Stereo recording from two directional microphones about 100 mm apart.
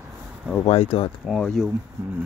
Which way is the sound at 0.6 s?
85° left.